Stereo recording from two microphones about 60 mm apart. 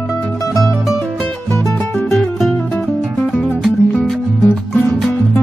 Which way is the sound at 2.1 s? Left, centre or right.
Centre.